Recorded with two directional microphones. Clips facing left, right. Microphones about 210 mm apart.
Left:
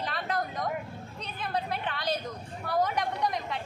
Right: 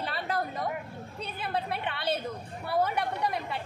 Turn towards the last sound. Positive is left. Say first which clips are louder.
# even
turn(degrees=-5)  # may be behind; listen again after turning